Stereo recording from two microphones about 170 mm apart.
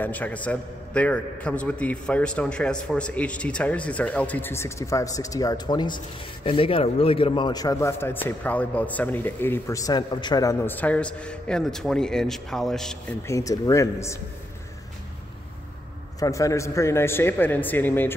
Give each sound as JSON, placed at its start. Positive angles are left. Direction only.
{"t": 0.0, "sound": "a man's voice", "side_deg": 10}
{"t": 13.3, "sound": "a man's voice", "side_deg": 20}
{"t": 16.2, "sound": "a man's voice", "side_deg": 20}